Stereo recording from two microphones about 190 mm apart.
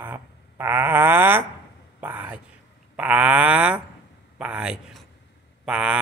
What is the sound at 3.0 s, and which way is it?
Mantra, 5° right (ahead or behind).